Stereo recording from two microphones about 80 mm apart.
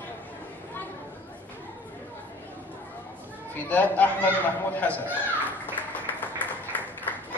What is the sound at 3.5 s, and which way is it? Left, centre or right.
A woman's voice, left.